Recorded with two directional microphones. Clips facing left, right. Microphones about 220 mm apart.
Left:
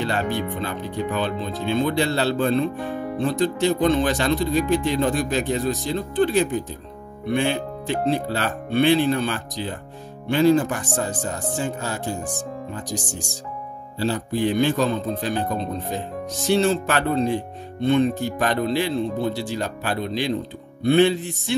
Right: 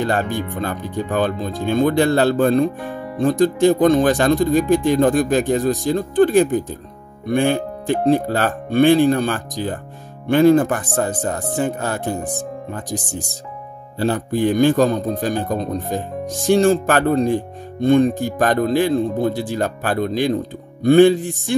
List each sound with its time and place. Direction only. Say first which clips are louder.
0.0 s a man's voice: right 3 dB; 50° right (ahead or behind)